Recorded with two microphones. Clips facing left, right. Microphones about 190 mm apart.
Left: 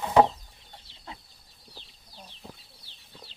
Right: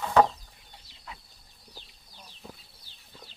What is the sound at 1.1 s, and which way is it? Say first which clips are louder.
Chicken: left 2 dB; 30° left (ahead or behind).